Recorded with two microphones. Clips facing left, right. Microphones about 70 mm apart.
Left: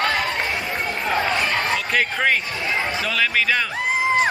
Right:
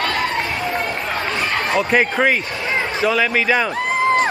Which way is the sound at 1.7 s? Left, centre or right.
Centre.